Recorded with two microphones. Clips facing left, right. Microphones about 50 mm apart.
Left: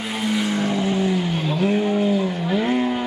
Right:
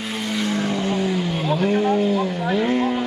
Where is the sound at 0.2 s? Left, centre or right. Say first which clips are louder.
Left 2 dB; centre.